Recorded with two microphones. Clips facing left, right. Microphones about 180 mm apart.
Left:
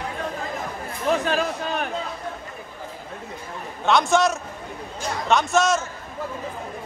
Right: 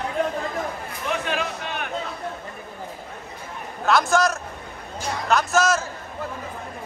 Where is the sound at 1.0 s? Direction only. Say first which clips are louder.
Left 5 dB; 35° left (ahead or behind).